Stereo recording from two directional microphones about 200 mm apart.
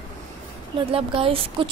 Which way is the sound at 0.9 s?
30° right (ahead or behind).